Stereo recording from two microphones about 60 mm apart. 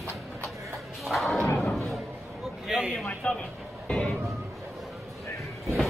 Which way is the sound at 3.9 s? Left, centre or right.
Centre.